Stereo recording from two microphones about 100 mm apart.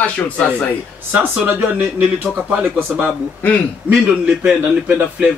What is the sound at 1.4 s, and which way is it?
A man's voice, 20° right (ahead or behind).